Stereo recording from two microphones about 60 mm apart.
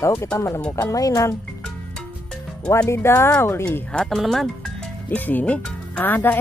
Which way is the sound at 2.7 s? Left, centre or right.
Left.